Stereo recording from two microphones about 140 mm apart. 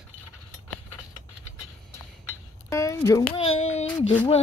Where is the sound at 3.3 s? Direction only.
45° left (ahead or behind).